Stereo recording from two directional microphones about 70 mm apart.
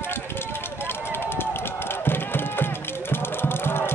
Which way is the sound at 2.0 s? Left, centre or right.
Left.